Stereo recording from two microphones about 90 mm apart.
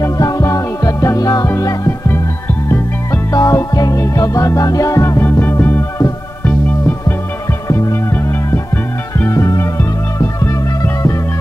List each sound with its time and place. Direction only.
0.0 s music: 40° left (ahead or behind)
3.3 s music: 40° left (ahead or behind)
5.2 s music: 20° left (ahead or behind)
7.6 s music: 30° left (ahead or behind)